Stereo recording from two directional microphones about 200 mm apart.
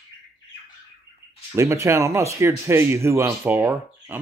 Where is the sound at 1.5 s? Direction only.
15° right (ahead or behind).